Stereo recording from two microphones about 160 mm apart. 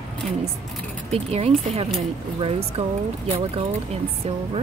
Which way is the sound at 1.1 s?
40° right (ahead or behind).